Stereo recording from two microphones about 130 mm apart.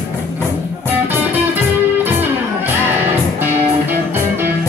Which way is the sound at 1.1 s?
15° right (ahead or behind).